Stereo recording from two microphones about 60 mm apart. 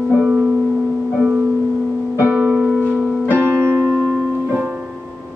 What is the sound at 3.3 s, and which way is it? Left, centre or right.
Music, right.